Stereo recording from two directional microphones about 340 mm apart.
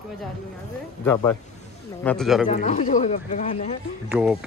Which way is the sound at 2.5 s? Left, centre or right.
Centre.